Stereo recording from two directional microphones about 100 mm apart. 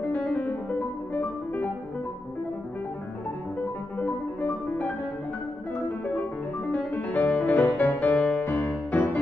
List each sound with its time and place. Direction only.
0.1 s piano: 10° left (ahead or behind)
4.0 s music: 15° left (ahead or behind)
6.7 s music: 15° left (ahead or behind)
8.1 s music: 10° left (ahead or behind)
8.5 s music: 20° left (ahead or behind)